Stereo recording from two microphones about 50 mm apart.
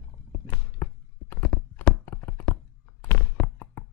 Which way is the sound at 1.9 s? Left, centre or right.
Centre.